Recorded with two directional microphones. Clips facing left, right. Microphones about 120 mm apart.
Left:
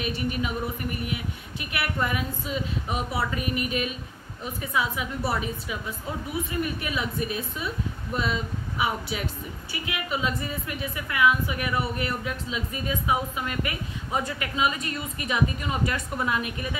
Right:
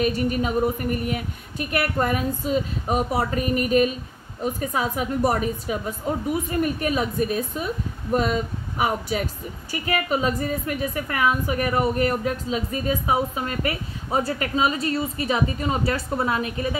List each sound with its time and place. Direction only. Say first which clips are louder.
0.0 s a woman's voice: right 6 dB; 40° right (ahead or behind)